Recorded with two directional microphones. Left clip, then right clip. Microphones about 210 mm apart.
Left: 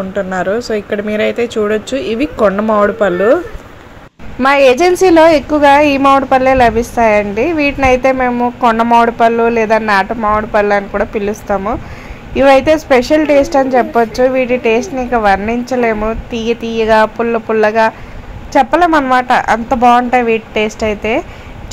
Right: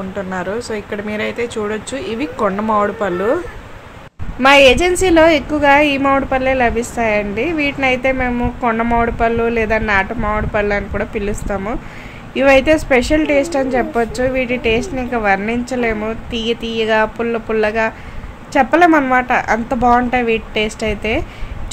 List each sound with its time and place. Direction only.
0.1 s a woman's voice: 20° left (ahead or behind)
4.4 s a woman's voice: 20° left (ahead or behind)